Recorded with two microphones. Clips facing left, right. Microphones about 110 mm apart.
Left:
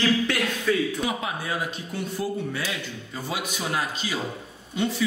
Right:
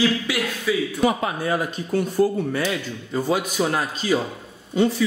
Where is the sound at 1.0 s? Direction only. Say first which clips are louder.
Right 7 dB; 45° right (ahead or behind).